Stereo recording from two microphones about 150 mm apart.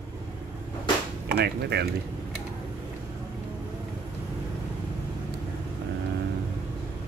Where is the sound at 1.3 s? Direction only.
90° right.